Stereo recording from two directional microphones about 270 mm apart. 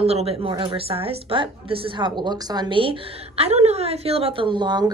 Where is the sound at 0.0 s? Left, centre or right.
Right.